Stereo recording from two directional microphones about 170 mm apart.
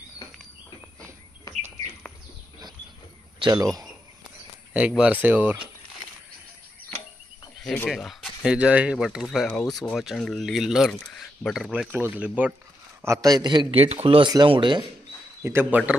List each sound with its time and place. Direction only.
3.3 s a man's voice: 20° right (ahead or behind)
4.7 s speech: 5° right (ahead or behind)
7.6 s a man's voice: 5° left (ahead or behind); by 14.9 s 25° right (ahead or behind)
15.4 s speech: 10° right (ahead or behind)